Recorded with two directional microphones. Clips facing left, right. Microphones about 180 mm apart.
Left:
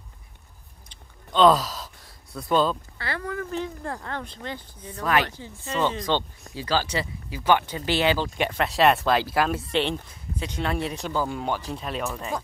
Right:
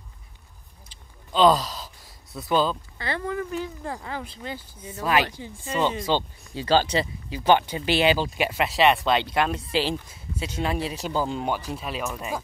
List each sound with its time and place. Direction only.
0.8 s gasp: centre (ahead or behind)
3.0 s speech: 20° right (ahead or behind)
3.5 s speech: 5° right (ahead or behind)
6.5 s speech: 25° right (ahead or behind); by 11.1 s 5° right (ahead or behind)
11.1 s speech: 20° right (ahead or behind)
11.7 s speech: 5° right (ahead or behind)